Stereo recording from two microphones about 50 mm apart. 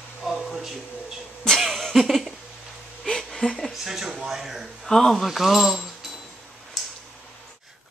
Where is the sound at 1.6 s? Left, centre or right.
Centre.